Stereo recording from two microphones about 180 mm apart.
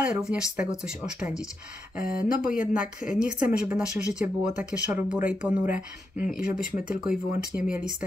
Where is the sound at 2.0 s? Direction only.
50° left (ahead or behind).